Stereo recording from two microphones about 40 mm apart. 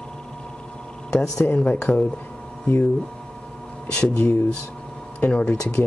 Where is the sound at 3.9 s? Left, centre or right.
Left.